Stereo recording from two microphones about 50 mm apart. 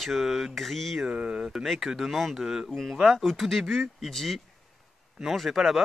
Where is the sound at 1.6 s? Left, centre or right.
Centre.